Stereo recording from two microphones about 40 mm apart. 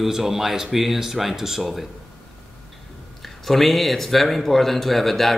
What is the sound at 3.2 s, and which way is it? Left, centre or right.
Speech, centre.